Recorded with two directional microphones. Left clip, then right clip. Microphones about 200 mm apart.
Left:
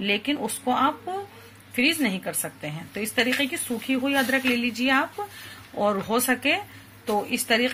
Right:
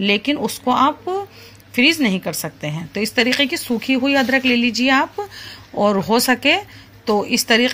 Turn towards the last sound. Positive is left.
turn(degrees=-40)  # may be behind; listen again after turning